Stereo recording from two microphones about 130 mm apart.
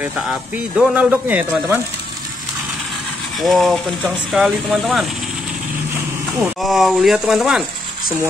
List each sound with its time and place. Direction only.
0.3 s speech: 5° right (ahead or behind)
1.1 s speech: 15° right (ahead or behind)
3.3 s speech: centre (ahead or behind)
6.4 s speech: centre (ahead or behind)